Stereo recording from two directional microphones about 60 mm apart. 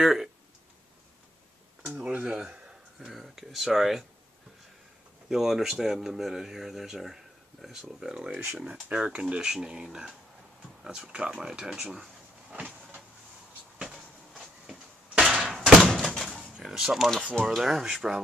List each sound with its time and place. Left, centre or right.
0.0 s speech: centre
1.9 s speech: centre
2.2 s a sound: centre
3.1 s speech: centre
5.3 s speech: centre
14.7 s a sound: centre
15.4 s thunk: centre
16.2 s a sound: centre
16.6 s speech: centre